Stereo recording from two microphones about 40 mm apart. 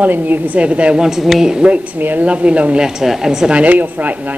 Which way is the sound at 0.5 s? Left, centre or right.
Right.